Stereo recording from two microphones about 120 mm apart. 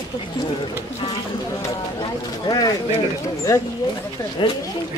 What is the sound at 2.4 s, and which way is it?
Speech, 30° left (ahead or behind).